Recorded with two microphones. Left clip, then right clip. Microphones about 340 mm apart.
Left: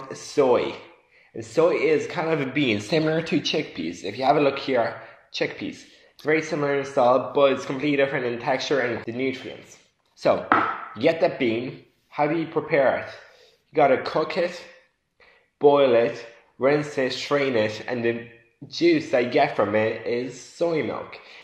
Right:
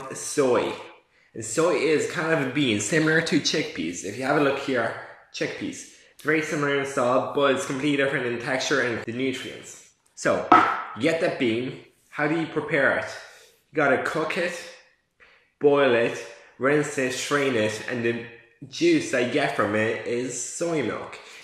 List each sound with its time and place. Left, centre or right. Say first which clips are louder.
0.1 s speech: left 2 dB; centre
15.6 s speech: left 2 dB; centre